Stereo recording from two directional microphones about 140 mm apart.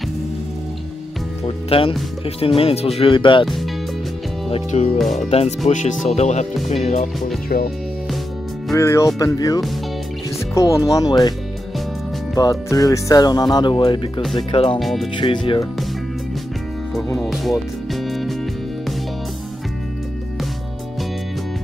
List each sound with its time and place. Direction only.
1.4 s speech: 40° left (ahead or behind)
3.4 s music: centre (ahead or behind)
4.5 s speech: 50° left (ahead or behind)
4.9 s speech: centre (ahead or behind)
5.7 s speech: 45° left (ahead or behind)
7.4 s speech: 90° left
8.7 s speech: 20° left (ahead or behind)
12.4 s speech: 25° left (ahead or behind)
14.8 s speech: centre (ahead or behind)
15.1 s speech: 35° left (ahead or behind)
16.9 s music: centre (ahead or behind)